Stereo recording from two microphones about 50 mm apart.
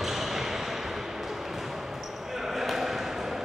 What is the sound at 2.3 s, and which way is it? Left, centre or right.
Basketball bounce, centre.